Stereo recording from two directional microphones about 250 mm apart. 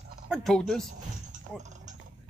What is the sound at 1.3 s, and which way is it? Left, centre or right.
Mechanisms, right.